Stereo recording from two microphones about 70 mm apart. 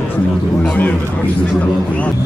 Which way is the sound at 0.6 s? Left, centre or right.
Left.